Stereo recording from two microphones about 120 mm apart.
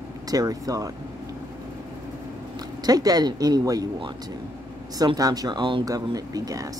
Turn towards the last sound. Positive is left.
turn(degrees=-30)  # may be behind; listen again after turning